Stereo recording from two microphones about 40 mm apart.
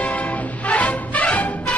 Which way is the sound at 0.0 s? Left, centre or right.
Left.